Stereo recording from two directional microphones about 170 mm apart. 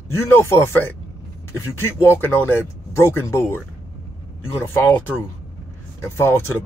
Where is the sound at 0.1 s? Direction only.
15° left (ahead or behind).